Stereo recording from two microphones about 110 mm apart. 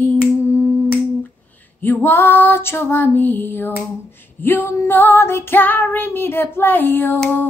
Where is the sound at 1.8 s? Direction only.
20° left (ahead or behind).